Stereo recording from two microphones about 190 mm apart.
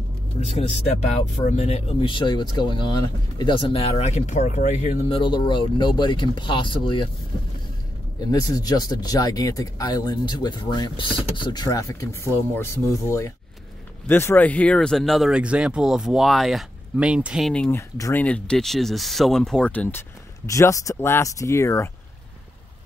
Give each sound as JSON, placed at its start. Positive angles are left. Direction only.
{"t": 0.5, "sound": "speech", "side_deg": 35}
{"t": 8.2, "sound": "speech", "side_deg": 20}
{"t": 14.0, "sound": "speech", "side_deg": 10}